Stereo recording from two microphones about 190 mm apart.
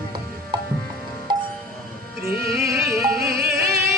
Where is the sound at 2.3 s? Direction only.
55° right (ahead or behind).